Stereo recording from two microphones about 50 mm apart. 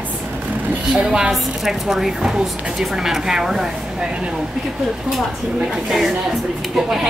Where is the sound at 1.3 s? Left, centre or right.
Centre.